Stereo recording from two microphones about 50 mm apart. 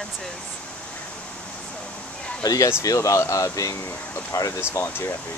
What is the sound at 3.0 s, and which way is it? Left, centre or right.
Speech, left.